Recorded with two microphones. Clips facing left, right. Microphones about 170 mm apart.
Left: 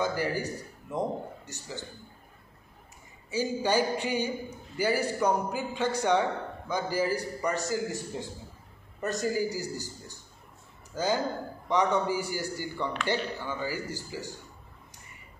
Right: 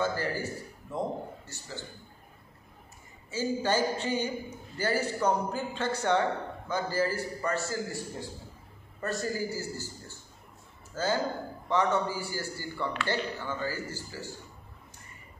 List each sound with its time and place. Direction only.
0.0 s a man's voice: 15° left (ahead or behind)
3.3 s a man's voice: 15° left (ahead or behind)